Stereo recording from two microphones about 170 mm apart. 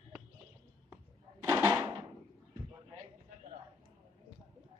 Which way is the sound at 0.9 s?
15° right (ahead or behind).